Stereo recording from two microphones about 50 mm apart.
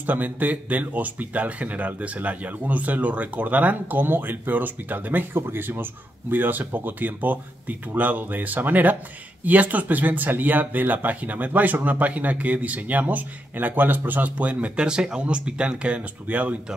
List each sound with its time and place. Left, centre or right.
0.0 s speech: right